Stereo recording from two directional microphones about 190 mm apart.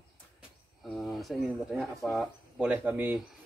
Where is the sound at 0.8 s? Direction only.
Centre (ahead or behind).